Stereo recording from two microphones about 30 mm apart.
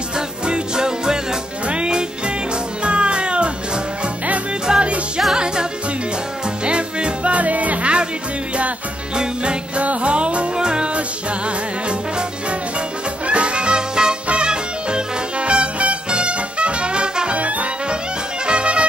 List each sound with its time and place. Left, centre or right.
0.5 s music: right
7.3 s music: right
9.1 s music: right
9.8 s music: right
10.5 s music: right
10.9 s music: right
17.4 s brass instrument: right
18.4 s music: right